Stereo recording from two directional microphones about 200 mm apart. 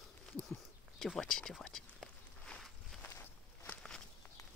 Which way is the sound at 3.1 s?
10° left (ahead or behind).